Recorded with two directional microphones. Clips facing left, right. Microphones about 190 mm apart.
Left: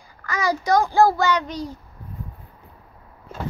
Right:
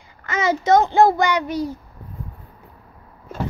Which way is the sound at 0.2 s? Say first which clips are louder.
Right 3 dB; 20° right (ahead or behind).